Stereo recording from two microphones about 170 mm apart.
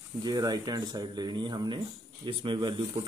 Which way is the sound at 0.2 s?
25° right (ahead or behind).